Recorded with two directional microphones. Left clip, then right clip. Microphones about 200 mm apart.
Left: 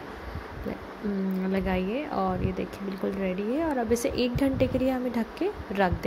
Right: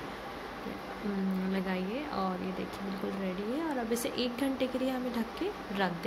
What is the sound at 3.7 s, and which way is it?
Speech, 25° left (ahead or behind).